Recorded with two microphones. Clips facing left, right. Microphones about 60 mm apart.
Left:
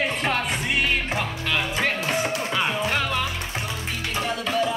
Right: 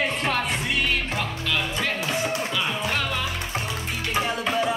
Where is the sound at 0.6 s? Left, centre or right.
Centre.